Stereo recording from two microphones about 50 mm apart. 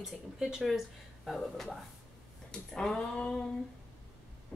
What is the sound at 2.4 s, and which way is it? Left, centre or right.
Speech, centre.